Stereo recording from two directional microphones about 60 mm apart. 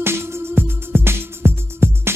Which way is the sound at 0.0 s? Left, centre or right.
Right.